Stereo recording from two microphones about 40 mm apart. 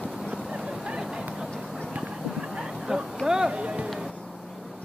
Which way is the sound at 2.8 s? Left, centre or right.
Centre.